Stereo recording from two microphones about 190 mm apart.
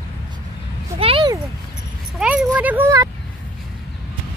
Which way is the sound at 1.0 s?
25° right (ahead or behind).